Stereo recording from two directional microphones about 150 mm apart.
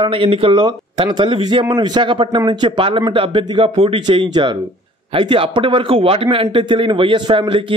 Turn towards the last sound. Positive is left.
turn(degrees=-35)  # may be behind; listen again after turning